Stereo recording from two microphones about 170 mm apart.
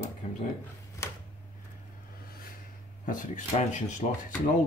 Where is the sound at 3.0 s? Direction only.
50° left (ahead or behind).